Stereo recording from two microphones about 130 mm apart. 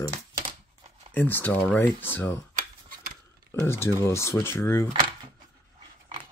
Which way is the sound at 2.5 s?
90° right.